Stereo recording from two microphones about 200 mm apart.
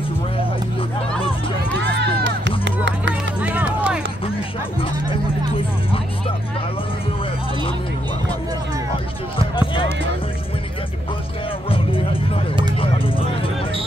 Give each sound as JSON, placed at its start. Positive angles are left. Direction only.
{"t": 2.0, "sound": "music", "side_deg": -60}
{"t": 3.3, "sound": "music", "side_deg": -5}
{"t": 11.7, "sound": "music", "side_deg": 30}
{"t": 12.8, "sound": "vehicle", "side_deg": 25}